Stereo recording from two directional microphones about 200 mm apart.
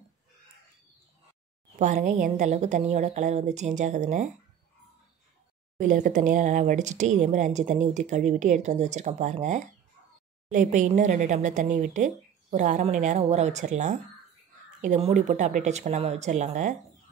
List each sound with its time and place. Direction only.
1.8 s a woman's voice: 40° right (ahead or behind)
5.8 s a woman's voice: 40° right (ahead or behind)